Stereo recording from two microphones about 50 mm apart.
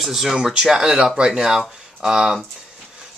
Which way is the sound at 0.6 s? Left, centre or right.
Centre.